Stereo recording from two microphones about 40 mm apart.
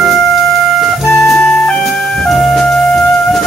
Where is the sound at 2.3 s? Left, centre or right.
Centre.